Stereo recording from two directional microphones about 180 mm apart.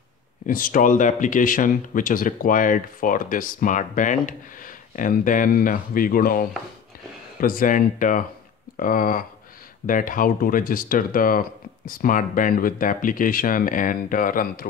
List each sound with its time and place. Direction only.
0.5 s speech: 50° left (ahead or behind)